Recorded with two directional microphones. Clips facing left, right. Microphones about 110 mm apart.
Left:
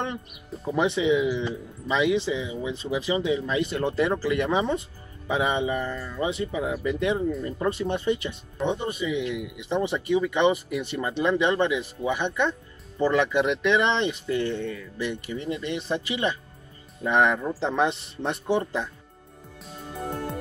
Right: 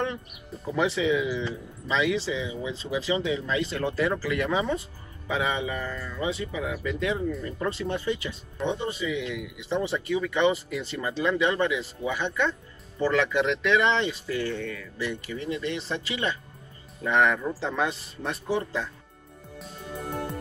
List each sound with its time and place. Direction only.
0.7 s speech: 20° left (ahead or behind)